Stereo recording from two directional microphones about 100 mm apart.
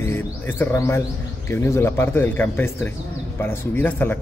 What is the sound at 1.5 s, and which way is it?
A man's voice, 25° left (ahead or behind).